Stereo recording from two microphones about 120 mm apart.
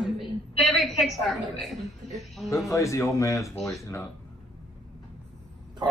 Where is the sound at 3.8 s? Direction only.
20° left (ahead or behind).